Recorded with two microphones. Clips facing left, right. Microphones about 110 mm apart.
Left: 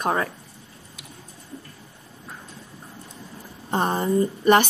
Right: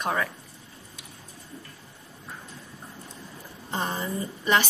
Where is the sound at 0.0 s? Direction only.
35° left (ahead or behind).